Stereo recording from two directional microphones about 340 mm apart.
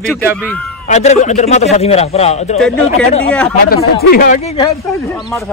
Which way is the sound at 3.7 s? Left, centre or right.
Left.